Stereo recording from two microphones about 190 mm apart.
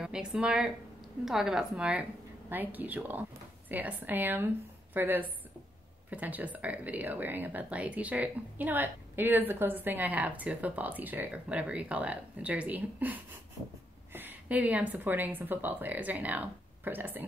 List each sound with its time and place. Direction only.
0.0 s a woman's voice: 5° right (ahead or behind)